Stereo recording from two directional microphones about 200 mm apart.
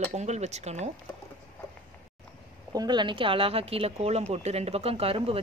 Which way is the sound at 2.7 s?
20° right (ahead or behind).